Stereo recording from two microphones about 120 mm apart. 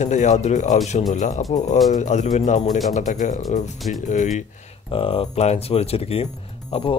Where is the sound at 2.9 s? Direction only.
90° left.